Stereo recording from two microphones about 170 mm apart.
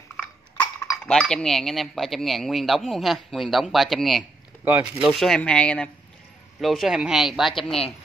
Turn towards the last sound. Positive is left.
turn(degrees=0)  # may be behind; listen again after turning